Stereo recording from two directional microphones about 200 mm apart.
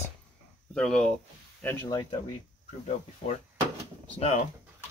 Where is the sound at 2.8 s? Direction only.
35° left (ahead or behind).